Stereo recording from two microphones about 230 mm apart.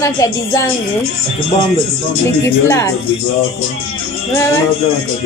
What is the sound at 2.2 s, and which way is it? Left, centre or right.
Speech, centre.